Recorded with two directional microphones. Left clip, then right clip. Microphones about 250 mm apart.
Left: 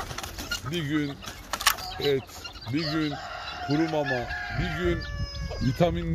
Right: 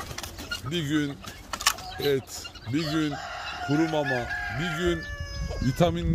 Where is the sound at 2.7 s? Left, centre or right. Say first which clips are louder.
Right 1 dB; right.